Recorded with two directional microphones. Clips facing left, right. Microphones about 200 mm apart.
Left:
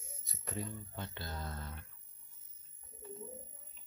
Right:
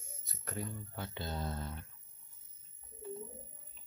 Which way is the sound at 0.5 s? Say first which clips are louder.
Even; 10° right (ahead or behind).